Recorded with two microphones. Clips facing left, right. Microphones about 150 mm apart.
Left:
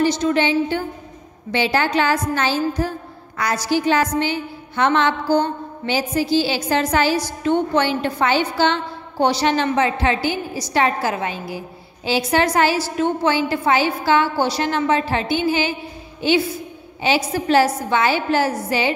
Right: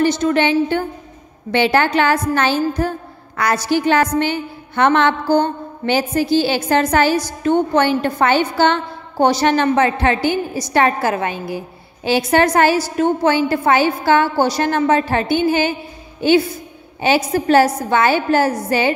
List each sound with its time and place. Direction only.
0.0 s a woman's voice: 55° right (ahead or behind)